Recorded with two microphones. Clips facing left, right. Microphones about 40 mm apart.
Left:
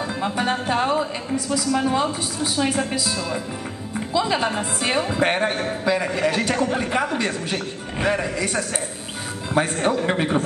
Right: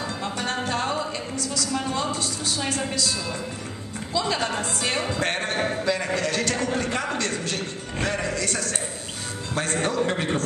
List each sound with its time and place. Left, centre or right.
0.2 s a woman's voice: centre